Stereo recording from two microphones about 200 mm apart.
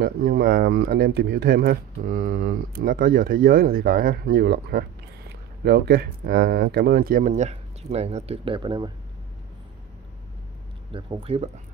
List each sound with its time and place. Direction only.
0.0 s speech: 50° right (ahead or behind); by 8.9 s 20° right (ahead or behind)
10.9 s speech: 25° right (ahead or behind)